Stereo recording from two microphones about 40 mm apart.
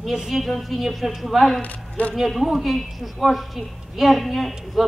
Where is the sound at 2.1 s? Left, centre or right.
Centre.